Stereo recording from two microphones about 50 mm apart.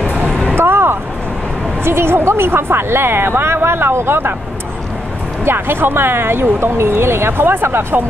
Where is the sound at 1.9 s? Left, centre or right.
Right.